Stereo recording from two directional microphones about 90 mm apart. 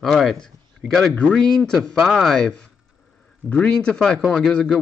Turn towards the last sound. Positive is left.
turn(degrees=5)  # may be behind; listen again after turning